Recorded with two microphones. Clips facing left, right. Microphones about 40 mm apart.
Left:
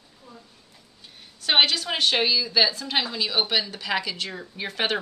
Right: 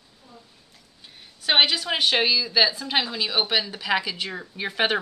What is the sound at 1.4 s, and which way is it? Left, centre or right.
A woman's voice, centre.